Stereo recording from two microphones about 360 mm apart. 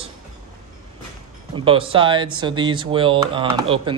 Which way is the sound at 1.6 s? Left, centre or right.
Centre.